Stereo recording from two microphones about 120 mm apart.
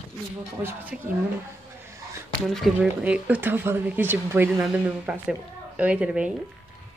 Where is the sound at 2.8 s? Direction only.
10° right (ahead or behind).